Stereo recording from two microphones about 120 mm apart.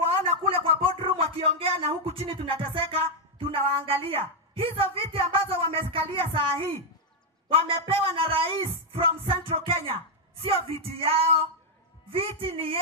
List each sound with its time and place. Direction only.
0.0 s a sound: 50° right (ahead or behind)
0.9 s music: 50° right (ahead or behind)
4.7 s speech: 50° right (ahead or behind)
10.4 s music: 55° right (ahead or behind)
12.1 s speech: 50° right (ahead or behind)